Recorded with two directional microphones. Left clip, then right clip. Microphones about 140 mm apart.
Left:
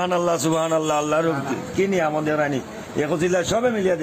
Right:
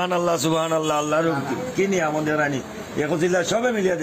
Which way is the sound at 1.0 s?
20° left (ahead or behind).